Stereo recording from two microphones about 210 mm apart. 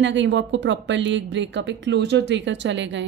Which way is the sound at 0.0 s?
60° right (ahead or behind).